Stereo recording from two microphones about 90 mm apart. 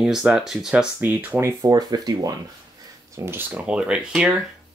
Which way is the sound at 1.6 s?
45° right (ahead or behind).